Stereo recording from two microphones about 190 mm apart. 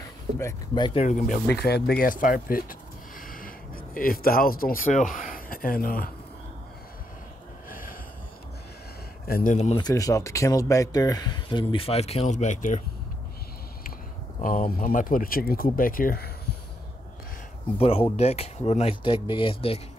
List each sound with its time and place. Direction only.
0.4 s speech: 20° left (ahead or behind)
0.9 s speech: 40° left (ahead or behind)
1.5 s speech: 55° left (ahead or behind)
9.3 s speech: 40° left (ahead or behind)
9.8 s speech: 20° left (ahead or behind); by 12.8 s 40° left (ahead or behind)
14.4 s speech: 45° left (ahead or behind)
17.7 s speech: 30° left (ahead or behind)